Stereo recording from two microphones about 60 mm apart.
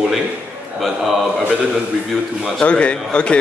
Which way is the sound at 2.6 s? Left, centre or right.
Left.